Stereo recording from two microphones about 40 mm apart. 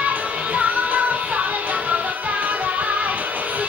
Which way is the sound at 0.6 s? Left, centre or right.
Right.